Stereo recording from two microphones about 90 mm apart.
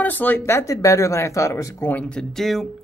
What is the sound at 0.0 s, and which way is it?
Speech, 20° left (ahead or behind).